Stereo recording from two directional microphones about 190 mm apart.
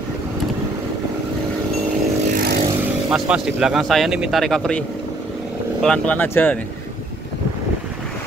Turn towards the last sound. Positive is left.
turn(degrees=10)  # may be behind; listen again after turning